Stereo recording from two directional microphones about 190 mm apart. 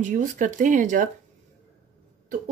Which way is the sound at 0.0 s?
45° right (ahead or behind).